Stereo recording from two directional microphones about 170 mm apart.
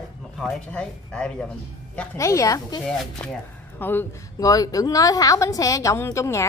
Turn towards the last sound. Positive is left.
turn(degrees=15)  # may be behind; listen again after turning